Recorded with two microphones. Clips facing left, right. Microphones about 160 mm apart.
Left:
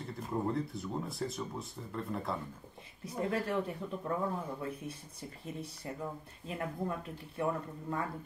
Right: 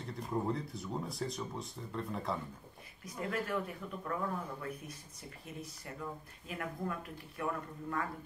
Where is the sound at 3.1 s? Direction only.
30° left (ahead or behind).